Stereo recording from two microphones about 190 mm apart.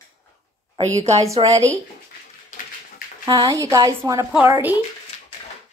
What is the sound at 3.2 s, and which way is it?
A woman's voice, 20° right (ahead or behind).